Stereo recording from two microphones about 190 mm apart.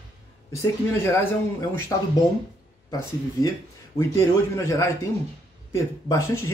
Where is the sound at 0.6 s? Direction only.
15° left (ahead or behind).